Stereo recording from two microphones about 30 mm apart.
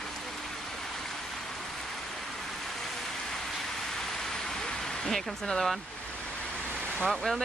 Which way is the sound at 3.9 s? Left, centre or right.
Centre.